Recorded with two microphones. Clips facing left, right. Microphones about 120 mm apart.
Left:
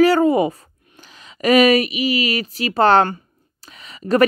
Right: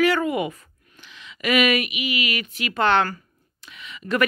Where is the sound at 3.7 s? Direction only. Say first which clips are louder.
Left 7 dB; 40° left (ahead or behind).